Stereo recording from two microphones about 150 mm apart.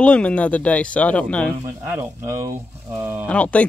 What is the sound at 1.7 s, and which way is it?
Speech, 15° right (ahead or behind).